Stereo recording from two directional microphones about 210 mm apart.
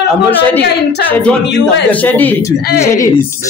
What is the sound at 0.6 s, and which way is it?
Speech, 50° left (ahead or behind).